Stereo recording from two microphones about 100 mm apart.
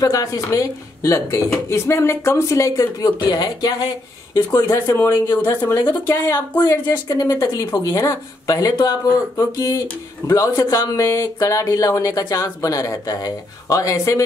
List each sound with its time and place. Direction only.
0.0 s speech: 35° left (ahead or behind)
4.6 s speech: 30° left (ahead or behind)
6.7 s speech: 30° left (ahead or behind)
9.4 s speech: 30° left (ahead or behind)